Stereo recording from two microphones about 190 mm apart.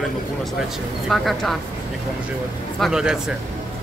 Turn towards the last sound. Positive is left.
turn(degrees=-5)  # may be behind; listen again after turning